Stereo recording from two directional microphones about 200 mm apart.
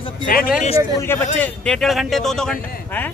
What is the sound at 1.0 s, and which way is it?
Speech, 10° left (ahead or behind).